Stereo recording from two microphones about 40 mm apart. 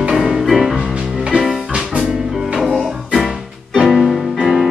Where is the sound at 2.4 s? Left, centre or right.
Centre.